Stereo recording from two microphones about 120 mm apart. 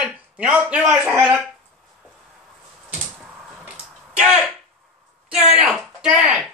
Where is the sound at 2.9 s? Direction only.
5° right (ahead or behind).